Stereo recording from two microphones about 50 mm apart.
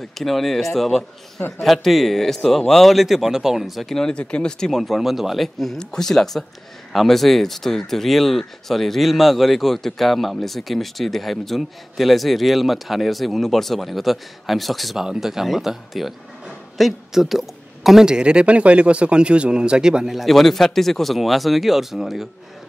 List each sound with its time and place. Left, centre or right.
0.2 s speech: centre
4.1 s a man's voice: left; by 18.0 s centre
18.0 s speech: centre
20.2 s speech: centre